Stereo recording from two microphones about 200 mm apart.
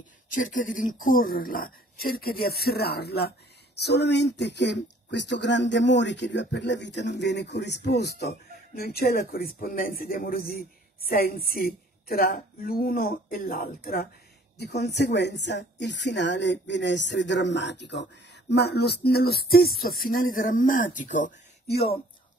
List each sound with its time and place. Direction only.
0.3 s speech: 40° left (ahead or behind)